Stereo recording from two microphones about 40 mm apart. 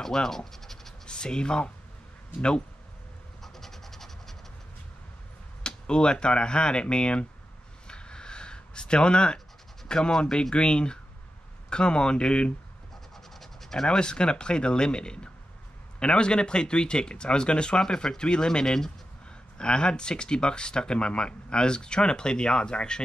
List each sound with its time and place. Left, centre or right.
0.0 s scratch: centre
1.0 s speech: left
3.4 s scratch: centre
5.6 s speech: left
7.9 s a sound: left
9.8 s speech: centre
13.1 s scratch: centre
13.8 s speech: left